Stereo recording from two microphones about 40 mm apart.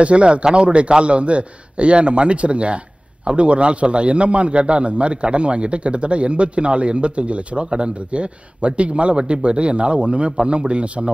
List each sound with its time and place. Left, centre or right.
0.0 s a man's voice: right